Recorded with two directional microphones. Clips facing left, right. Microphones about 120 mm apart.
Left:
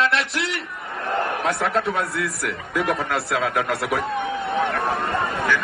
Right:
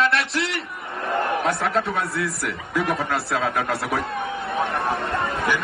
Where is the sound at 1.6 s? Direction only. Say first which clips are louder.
Left 1 dB; centre (ahead or behind).